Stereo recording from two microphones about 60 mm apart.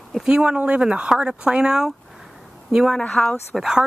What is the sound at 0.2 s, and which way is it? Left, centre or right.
Speech, centre.